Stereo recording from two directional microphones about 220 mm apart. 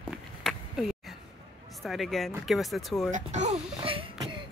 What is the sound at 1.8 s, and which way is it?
Speech, centre (ahead or behind).